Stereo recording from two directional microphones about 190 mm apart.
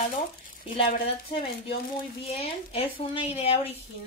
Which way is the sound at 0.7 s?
30° left (ahead or behind).